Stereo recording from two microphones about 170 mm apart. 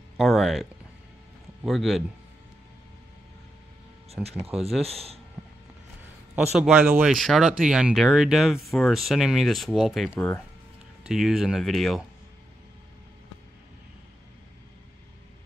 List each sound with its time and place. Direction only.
0.2 s speech: centre (ahead or behind)
4.1 s speech: 35° right (ahead or behind)
4.6 s speech: centre (ahead or behind)
4.8 s speech: 35° right (ahead or behind)
6.3 s speech: 5° right (ahead or behind)
10.0 s speech: 10° left (ahead or behind)
11.1 s speech: centre (ahead or behind)